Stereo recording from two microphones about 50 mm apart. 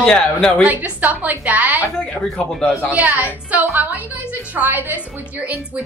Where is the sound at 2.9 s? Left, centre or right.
Right.